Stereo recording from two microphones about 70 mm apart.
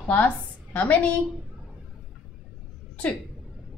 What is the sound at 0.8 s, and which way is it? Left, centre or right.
Speech, left.